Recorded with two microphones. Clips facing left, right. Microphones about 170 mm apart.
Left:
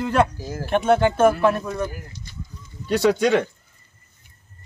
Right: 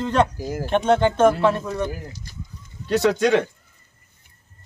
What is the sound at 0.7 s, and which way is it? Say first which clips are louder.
Speech: even; 5° left (ahead or behind).